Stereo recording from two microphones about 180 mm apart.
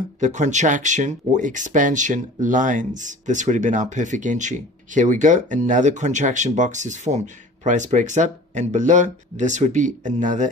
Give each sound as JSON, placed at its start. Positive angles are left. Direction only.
{"t": 0.2, "sound": "speech", "side_deg": -40}